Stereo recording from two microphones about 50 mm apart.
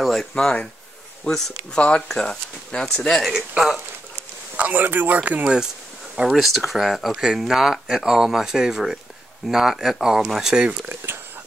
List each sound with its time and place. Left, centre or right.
0.0 s a sound: centre
1.3 s speech: left
3.5 s speech: centre
4.6 s speech: right
5.2 s speech: right
6.1 s speech: centre
10.5 s speech: right